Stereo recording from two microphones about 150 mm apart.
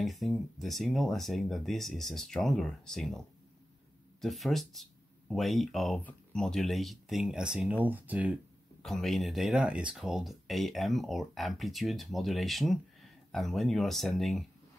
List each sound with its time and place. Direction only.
0.0 s speech: centre (ahead or behind)
8.8 s speech: centre (ahead or behind)